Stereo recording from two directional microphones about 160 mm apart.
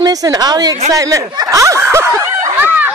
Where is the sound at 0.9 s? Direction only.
20° right (ahead or behind).